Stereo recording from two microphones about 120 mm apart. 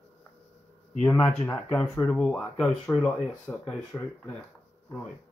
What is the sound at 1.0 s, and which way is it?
Speech, 10° left (ahead or behind).